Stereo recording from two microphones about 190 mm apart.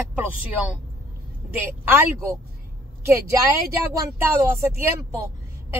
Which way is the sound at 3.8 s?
15° right (ahead or behind).